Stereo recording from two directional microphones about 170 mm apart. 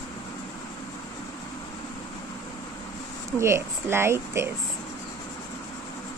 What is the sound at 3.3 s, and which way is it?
Speech, 15° right (ahead or behind).